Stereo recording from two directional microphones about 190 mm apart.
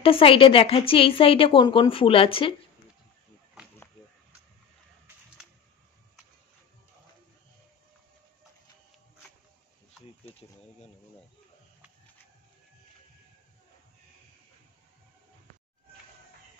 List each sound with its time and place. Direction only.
0.0 s speech: 30° left (ahead or behind)